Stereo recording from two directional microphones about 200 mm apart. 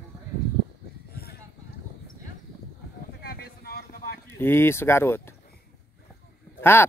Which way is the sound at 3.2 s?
50° left (ahead or behind).